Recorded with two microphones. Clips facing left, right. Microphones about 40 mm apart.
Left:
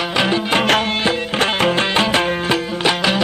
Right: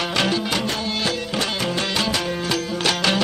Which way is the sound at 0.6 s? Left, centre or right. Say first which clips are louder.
Left 10 dB; left.